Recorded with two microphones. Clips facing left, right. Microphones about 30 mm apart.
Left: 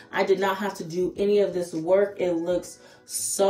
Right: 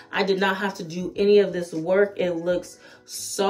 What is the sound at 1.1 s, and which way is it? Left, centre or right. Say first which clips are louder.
Speech: right 6 dB; right.